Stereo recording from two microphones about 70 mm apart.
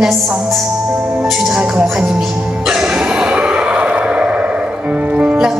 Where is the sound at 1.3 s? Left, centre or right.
Centre.